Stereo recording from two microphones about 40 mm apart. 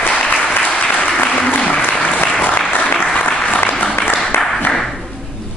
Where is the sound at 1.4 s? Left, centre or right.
Left.